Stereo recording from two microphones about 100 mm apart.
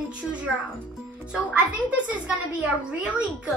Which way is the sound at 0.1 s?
10° right (ahead or behind).